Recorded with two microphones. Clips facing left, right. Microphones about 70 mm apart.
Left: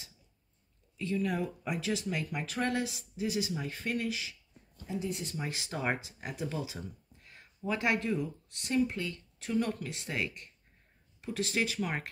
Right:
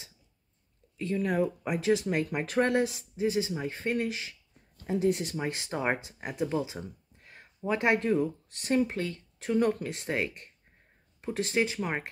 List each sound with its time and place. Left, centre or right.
0.9 s speech: right
4.8 s speech: right
5.4 s speech: right